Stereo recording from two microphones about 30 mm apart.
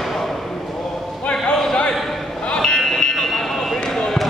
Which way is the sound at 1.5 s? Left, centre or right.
Left.